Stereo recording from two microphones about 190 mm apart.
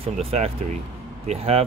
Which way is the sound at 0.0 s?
30° right (ahead or behind).